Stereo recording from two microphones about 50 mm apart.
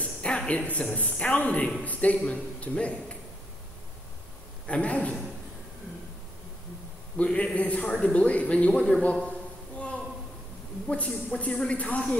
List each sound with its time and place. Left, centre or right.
0.0 s a sound: left
0.5 s a man's voice: left
4.6 s a man's voice: left
7.2 s a man's voice: left
9.8 s a sound: left
10.9 s a man's voice: left
11.5 s speech: centre